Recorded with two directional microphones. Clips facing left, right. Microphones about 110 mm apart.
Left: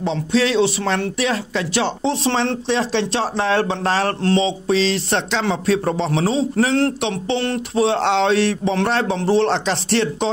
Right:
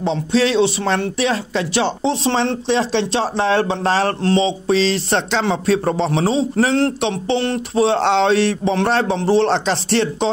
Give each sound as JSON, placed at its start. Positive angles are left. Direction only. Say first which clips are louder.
{"t": 0.0, "sound": "speech", "louder": "right 2 dB", "side_deg": -30}
{"t": 4.5, "sound": "a man's voice", "louder": "right 2 dB", "side_deg": -35}